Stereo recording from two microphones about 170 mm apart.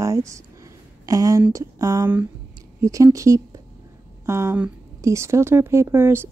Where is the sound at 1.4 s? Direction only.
20° right (ahead or behind).